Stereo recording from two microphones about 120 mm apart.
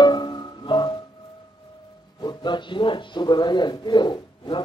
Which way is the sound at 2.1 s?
40° left (ahead or behind).